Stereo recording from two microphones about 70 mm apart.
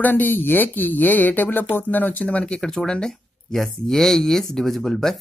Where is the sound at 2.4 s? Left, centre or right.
Centre.